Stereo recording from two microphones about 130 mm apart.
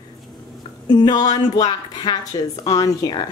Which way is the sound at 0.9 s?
30° left (ahead or behind).